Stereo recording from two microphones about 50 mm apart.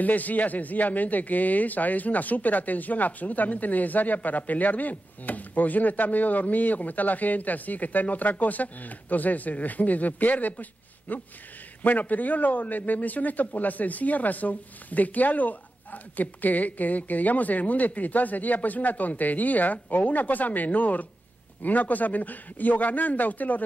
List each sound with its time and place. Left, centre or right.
0.0 s a man's voice: left